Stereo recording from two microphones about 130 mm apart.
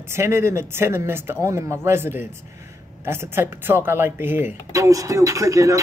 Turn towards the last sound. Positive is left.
turn(degrees=-25)  # may be behind; listen again after turning